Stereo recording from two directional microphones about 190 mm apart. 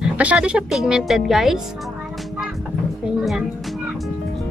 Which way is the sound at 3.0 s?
Centre (ahead or behind).